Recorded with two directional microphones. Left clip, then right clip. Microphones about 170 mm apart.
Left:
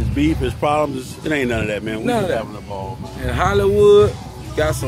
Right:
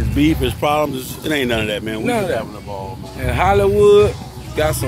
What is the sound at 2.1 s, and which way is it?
Speech, 15° left (ahead or behind).